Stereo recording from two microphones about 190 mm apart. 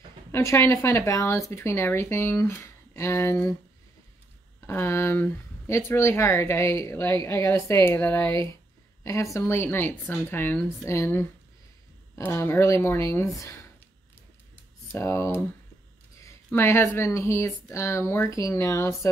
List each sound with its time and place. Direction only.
0.3 s speech: 15° left (ahead or behind)
4.6 s speech: 15° left (ahead or behind)
14.9 s speech: 15° left (ahead or behind)